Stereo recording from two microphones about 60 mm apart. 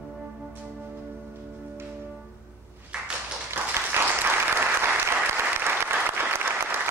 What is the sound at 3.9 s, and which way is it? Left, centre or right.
Applause, right.